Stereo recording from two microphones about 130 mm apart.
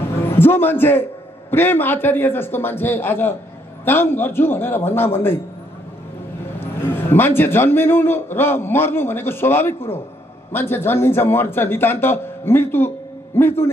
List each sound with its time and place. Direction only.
0.4 s a man's voice: 15° left (ahead or behind)
6.6 s a man's voice: 15° left (ahead or behind)